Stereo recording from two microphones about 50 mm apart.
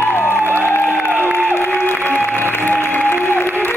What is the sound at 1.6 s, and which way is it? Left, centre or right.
Music, left.